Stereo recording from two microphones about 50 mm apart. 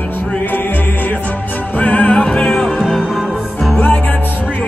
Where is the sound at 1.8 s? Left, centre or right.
Left.